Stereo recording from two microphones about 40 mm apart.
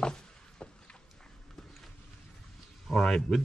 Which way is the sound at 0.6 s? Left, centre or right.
Left.